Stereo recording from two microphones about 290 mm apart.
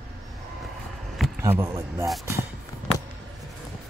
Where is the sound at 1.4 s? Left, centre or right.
Centre.